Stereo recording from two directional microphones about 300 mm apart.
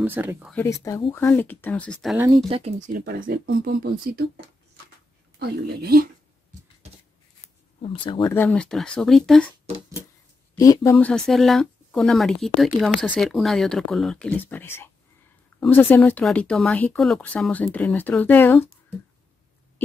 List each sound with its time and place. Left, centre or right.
0.0 s speech: centre
2.2 s speech: centre
8.0 s speech: centre
10.5 s speech: centre